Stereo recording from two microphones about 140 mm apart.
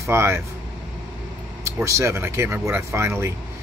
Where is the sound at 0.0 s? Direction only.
20° right (ahead or behind).